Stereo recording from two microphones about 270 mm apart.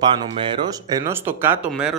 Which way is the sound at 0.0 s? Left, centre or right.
Centre.